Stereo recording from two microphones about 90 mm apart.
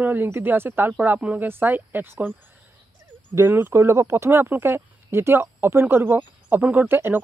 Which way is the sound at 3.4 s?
25° right (ahead or behind).